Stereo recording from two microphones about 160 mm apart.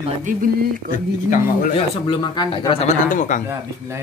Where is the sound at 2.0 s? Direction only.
25° left (ahead or behind).